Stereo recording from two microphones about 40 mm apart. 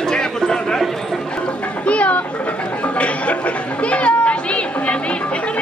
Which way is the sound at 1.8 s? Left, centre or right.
Left.